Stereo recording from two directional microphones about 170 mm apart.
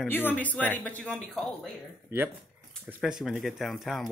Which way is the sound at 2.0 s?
10° right (ahead or behind).